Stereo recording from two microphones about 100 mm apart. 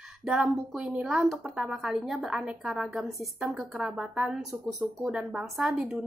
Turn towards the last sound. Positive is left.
turn(degrees=-5)  # may be behind; listen again after turning